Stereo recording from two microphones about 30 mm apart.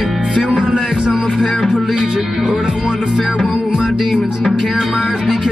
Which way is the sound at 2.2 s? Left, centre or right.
Centre.